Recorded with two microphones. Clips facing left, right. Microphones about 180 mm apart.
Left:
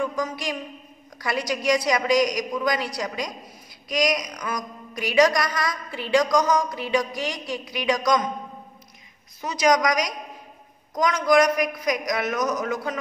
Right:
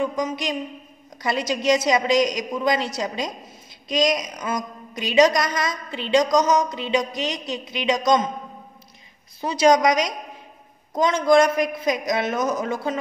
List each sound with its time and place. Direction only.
0.0 s a woman's voice: 20° right (ahead or behind)
9.4 s a woman's voice: 30° right (ahead or behind)